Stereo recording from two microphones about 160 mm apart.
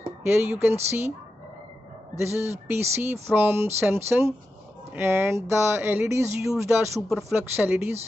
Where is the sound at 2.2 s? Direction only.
15° right (ahead or behind).